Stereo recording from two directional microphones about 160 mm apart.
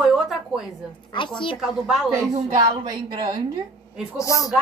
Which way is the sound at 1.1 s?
30° left (ahead or behind).